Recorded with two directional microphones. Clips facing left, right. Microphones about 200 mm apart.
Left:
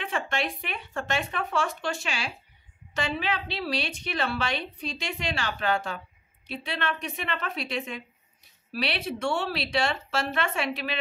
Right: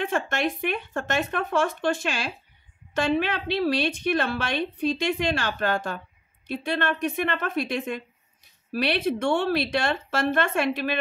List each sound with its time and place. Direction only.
0.0 s a woman's voice: 50° right (ahead or behind)